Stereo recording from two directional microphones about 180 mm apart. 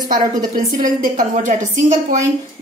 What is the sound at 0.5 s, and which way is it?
A woman's voice, 45° right (ahead or behind).